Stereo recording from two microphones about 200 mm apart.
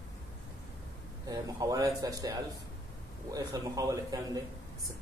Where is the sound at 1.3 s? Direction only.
20° right (ahead or behind).